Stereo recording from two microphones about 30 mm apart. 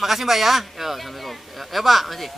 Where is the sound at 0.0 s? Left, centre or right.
Centre.